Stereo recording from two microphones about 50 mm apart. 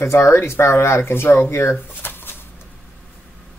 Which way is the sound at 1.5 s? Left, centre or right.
Left.